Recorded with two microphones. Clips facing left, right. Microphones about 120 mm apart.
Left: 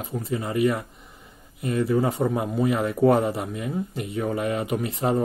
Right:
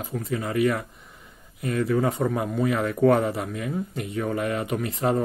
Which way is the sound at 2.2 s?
15° left (ahead or behind).